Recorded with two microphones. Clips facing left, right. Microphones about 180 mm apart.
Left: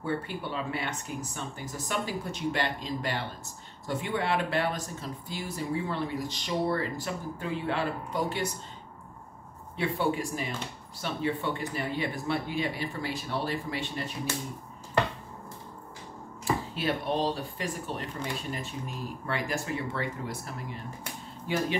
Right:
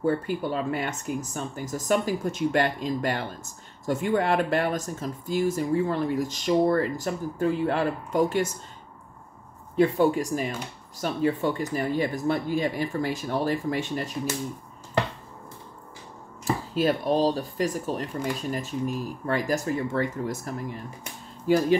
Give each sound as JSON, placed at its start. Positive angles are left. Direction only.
{"t": 0.0, "sound": "speech", "side_deg": -45}
{"t": 9.8, "sound": "speech", "side_deg": -45}
{"t": 16.4, "sound": "speech", "side_deg": -40}